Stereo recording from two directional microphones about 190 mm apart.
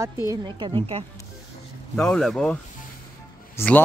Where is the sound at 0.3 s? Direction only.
25° right (ahead or behind).